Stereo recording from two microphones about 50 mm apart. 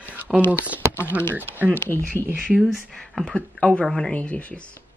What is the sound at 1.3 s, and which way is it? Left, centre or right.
Speech, right.